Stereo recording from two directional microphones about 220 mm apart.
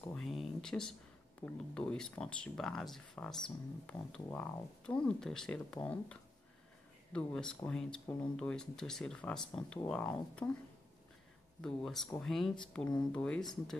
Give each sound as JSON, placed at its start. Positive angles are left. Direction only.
{"t": 0.0, "sound": "a sound", "side_deg": 0}
{"t": 1.4, "sound": "speech", "side_deg": 5}
{"t": 11.6, "sound": "speech", "side_deg": 0}